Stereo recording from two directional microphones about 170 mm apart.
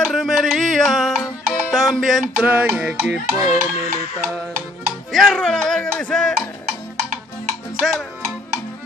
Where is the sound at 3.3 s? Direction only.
20° right (ahead or behind).